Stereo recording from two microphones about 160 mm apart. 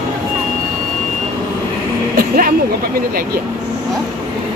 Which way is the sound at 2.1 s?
65° right (ahead or behind).